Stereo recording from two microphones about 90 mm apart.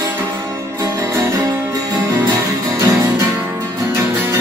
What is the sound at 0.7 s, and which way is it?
Music, 40° right (ahead or behind).